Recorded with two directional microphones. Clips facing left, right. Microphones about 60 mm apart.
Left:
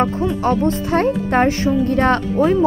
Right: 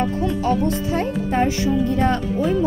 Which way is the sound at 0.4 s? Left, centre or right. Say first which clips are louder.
Left 3 dB; left.